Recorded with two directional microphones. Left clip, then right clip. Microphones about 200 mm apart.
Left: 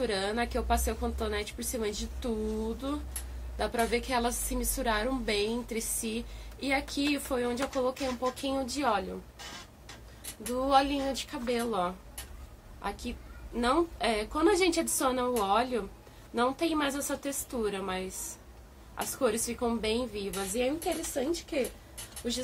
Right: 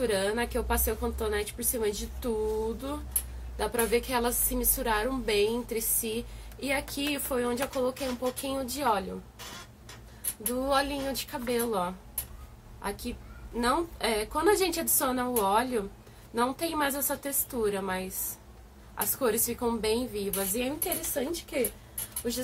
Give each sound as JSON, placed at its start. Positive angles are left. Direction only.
{"t": 0.0, "sound": "a woman's voice", "side_deg": 10}
{"t": 10.4, "sound": "a woman's voice", "side_deg": 10}